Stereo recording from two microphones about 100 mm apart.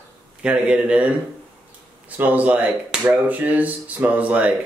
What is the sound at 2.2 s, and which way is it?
Speech, 15° right (ahead or behind).